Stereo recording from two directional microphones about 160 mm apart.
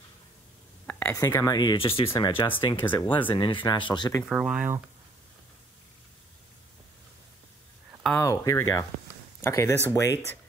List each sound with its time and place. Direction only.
0.8 s a sound: 10° left (ahead or behind)
1.1 s speech: 20° left (ahead or behind)
4.3 s speech: 5° right (ahead or behind)
8.2 s speech: 20° left (ahead or behind)